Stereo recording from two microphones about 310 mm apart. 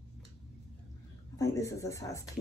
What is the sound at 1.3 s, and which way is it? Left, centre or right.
Speech, centre.